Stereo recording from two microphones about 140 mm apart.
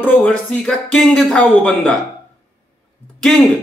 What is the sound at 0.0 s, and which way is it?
A man's voice, 10° left (ahead or behind).